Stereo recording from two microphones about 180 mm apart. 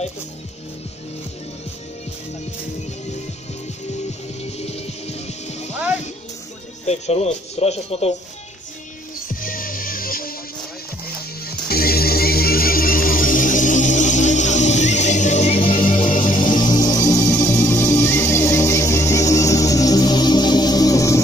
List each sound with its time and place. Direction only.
4.4 s speech: 35° left (ahead or behind)
6.9 s speech: 35° left (ahead or behind)
9.3 s music: 50° left (ahead or behind)
11.4 s music: 60° left (ahead or behind); by 21.2 s 20° left (ahead or behind)